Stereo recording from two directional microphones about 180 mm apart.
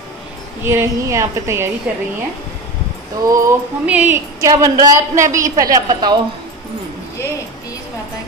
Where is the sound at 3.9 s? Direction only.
10° right (ahead or behind).